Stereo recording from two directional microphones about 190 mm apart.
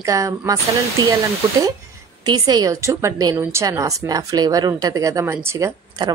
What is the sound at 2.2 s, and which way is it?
A woman's voice, 20° right (ahead or behind).